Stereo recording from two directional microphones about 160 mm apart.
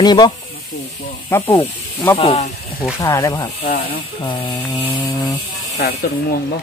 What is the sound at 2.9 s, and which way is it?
Speech, 20° left (ahead or behind).